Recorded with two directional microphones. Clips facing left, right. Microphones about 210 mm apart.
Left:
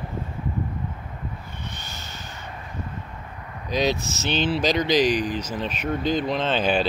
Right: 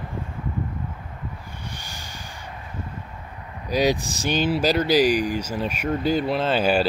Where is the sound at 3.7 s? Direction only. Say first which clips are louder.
Right 2 dB; 10° right (ahead or behind).